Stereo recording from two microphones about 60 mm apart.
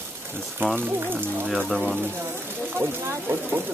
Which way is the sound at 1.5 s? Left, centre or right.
Centre.